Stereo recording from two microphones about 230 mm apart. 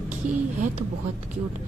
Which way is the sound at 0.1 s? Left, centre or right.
Right.